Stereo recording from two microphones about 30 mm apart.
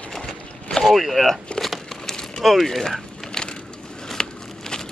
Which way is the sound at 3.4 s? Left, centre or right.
Left.